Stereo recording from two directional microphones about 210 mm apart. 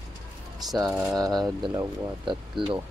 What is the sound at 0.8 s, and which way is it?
Speech, 15° right (ahead or behind).